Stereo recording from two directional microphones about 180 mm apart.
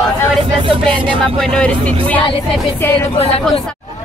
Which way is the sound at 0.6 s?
30° right (ahead or behind).